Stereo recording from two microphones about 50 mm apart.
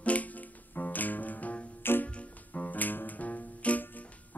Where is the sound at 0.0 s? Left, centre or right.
Left.